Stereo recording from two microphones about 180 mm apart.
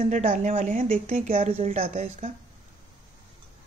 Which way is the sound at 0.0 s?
40° right (ahead or behind).